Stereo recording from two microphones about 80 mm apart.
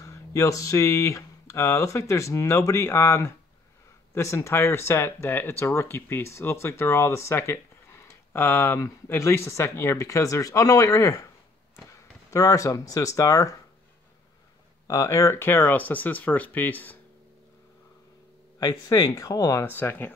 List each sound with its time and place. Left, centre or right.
0.0 s speech: left
15.0 s speech: left
18.6 s speech: left
19.6 s speech: left